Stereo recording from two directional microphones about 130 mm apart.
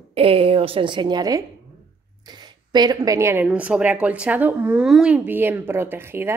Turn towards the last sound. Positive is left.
turn(degrees=-20)  # may be behind; listen again after turning